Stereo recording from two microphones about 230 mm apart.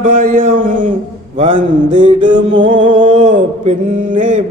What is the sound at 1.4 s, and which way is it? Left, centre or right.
Mantra, right.